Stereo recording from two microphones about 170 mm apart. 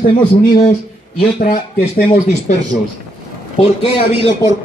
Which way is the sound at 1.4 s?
60° left (ahead or behind).